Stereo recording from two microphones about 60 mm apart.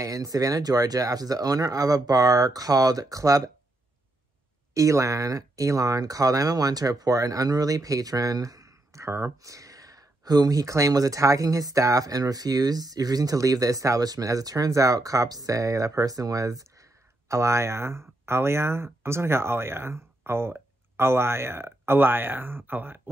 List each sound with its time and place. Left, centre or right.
0.0 s speech: right
4.7 s speech: right